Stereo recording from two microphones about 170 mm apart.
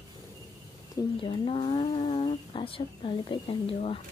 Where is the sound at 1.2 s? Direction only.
30° left (ahead or behind).